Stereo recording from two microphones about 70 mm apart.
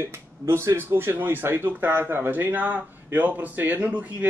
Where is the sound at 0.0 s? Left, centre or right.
Right.